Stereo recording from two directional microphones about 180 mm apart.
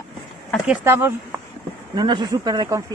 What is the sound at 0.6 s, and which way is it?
Speech, 10° right (ahead or behind).